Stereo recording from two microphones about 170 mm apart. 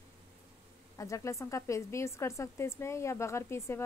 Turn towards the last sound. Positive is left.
turn(degrees=15)  # may be behind; listen again after turning